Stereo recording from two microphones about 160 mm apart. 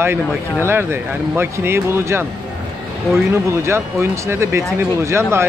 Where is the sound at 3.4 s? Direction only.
15° right (ahead or behind).